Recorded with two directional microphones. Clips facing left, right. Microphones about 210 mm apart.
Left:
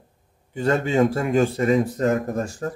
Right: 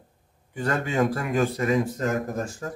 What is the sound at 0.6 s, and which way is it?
A man's voice, 25° left (ahead or behind).